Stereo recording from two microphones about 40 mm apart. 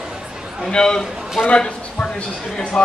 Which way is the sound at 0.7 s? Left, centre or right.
Centre.